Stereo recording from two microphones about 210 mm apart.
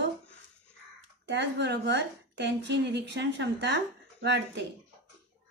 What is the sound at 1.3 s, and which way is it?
A woman's voice, 55° right (ahead or behind).